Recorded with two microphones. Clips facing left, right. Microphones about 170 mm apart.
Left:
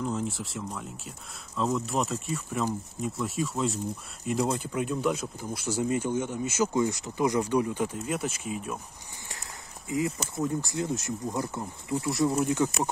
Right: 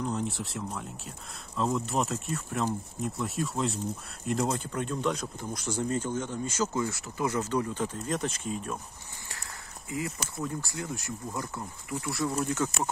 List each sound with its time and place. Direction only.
0.0 s speech: centre (ahead or behind)
9.3 s speech: 20° left (ahead or behind)